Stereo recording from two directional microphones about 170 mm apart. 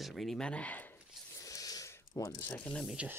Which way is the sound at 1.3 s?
20° left (ahead or behind).